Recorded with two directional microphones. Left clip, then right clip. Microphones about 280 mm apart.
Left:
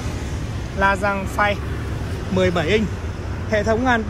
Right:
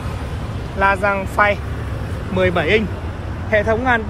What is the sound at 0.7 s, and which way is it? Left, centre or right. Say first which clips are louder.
Speech: right 3 dB; centre.